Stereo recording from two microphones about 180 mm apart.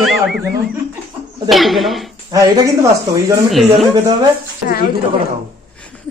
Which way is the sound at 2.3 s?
20° right (ahead or behind).